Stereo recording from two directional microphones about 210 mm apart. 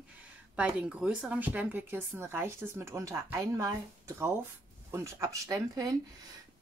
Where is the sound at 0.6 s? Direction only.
5° right (ahead or behind).